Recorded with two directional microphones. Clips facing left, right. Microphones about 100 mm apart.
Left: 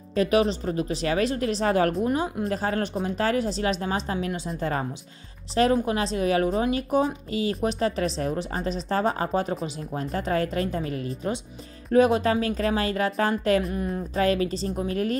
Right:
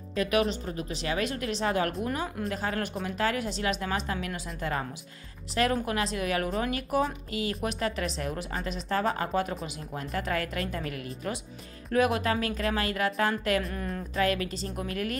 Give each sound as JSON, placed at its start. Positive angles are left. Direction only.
{"t": 0.1, "sound": "a woman's voice", "side_deg": 30}
{"t": 2.0, "sound": "speech", "side_deg": 20}
{"t": 2.4, "sound": "a woman's voice", "side_deg": 35}